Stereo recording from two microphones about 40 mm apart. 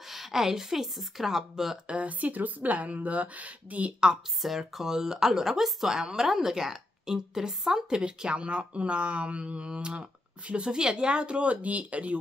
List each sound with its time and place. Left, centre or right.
0.0 s a woman's voice: centre
1.9 s speech: right
4.4 s a woman's voice: centre
8.0 s speech: right